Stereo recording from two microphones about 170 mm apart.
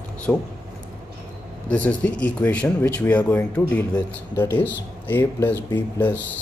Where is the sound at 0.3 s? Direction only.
5° left (ahead or behind).